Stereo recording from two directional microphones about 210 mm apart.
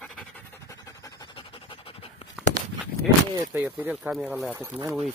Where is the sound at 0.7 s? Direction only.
15° left (ahead or behind).